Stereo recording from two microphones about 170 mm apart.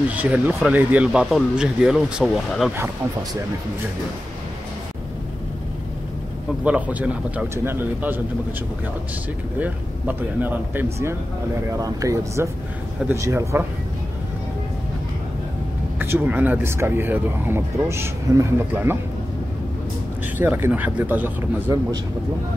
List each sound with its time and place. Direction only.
0.1 s speech: 10° right (ahead or behind)
6.6 s speech: 10° right (ahead or behind)
9.6 s speech: 10° right (ahead or behind)
16.0 s speech: 10° right (ahead or behind)
20.3 s speech: 10° right (ahead or behind)